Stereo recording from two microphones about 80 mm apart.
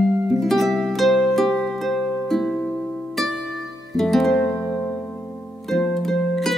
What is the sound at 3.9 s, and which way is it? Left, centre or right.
Music, centre.